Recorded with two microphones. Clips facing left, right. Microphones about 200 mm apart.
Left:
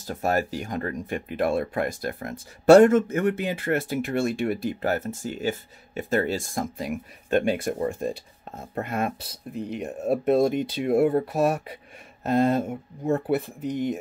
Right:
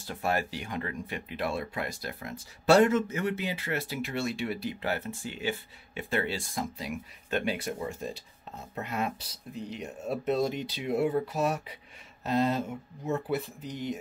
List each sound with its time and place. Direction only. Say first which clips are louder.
0.0 s speech: left 5 dB; 45° left (ahead or behind)